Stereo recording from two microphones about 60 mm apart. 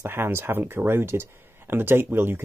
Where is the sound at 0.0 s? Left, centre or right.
Right.